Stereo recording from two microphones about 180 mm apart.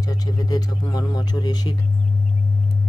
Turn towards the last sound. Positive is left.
turn(degrees=20)  # may be behind; listen again after turning